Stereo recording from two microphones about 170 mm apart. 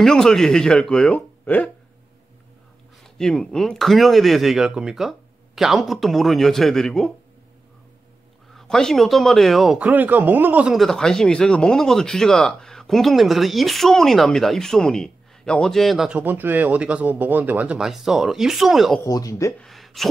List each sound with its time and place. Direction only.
0.0 s speech: 5° left (ahead or behind)
3.2 s speech: 5° left (ahead or behind)
8.5 s speech: centre (ahead or behind)
19.0 s speech: 20° left (ahead or behind)
19.6 s a sound: centre (ahead or behind)